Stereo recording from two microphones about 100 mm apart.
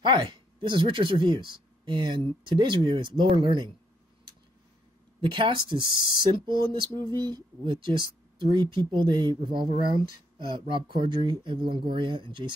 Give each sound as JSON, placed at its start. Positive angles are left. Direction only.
{"t": 0.0, "sound": "speech", "side_deg": -50}
{"t": 5.2, "sound": "speech", "side_deg": -55}